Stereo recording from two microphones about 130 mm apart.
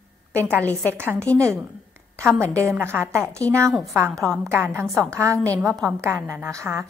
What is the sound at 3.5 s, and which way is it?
Speech, 20° right (ahead or behind).